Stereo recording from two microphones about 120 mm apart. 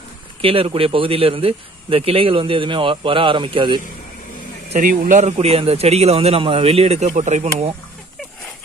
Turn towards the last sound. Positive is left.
turn(degrees=-65)  # may be behind; listen again after turning